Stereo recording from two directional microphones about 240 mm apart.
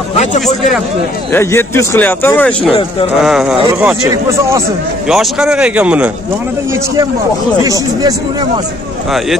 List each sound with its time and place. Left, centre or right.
0.2 s speech: left
1.3 s speech: centre
5.1 s speech: centre
7.6 s speech: centre